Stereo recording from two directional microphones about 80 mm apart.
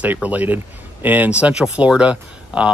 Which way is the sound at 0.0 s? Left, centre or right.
Centre.